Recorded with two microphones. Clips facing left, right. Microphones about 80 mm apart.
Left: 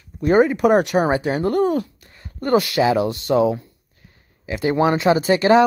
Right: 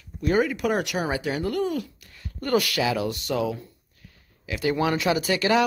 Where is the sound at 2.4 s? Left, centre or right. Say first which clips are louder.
Left 6 dB; left.